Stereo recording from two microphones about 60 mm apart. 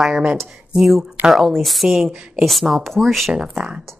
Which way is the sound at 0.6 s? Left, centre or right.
Centre.